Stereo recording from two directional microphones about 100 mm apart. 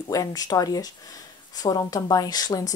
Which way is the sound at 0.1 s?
35° left (ahead or behind).